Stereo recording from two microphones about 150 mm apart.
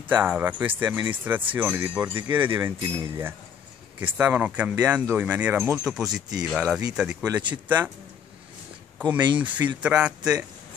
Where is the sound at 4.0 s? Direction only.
10° right (ahead or behind).